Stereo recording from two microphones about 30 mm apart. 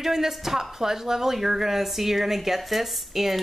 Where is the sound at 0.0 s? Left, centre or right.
Centre.